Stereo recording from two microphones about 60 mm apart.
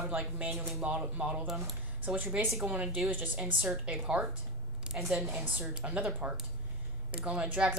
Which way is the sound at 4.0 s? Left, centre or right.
Centre.